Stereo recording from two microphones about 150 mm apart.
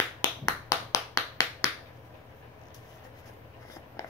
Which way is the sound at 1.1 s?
20° left (ahead or behind).